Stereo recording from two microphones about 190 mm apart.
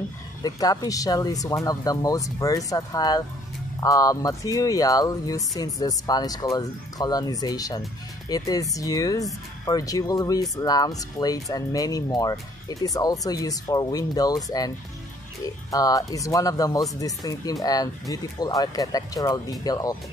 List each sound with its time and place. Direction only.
0.4 s speech: 20° left (ahead or behind)
15.7 s speech: 20° left (ahead or behind)